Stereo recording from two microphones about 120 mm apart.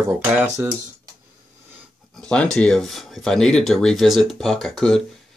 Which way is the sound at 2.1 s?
10° left (ahead or behind).